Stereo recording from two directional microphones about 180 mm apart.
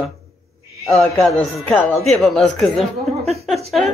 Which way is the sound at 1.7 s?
10° left (ahead or behind).